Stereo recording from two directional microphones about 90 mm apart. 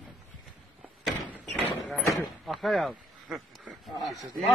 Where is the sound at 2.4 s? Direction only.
Centre (ahead or behind).